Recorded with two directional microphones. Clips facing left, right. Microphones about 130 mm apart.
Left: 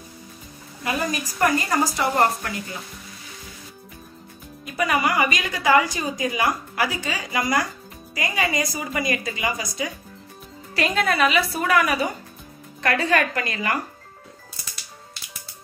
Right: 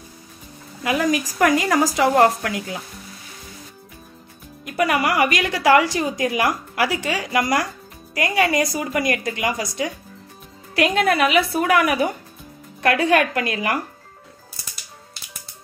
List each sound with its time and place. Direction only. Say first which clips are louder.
0.8 s a woman's voice: right 5 dB; 90° right
4.6 s a woman's voice: right 2 dB; 65° right (ahead or behind)
13.1 s speech: right 2 dB; 70° right (ahead or behind)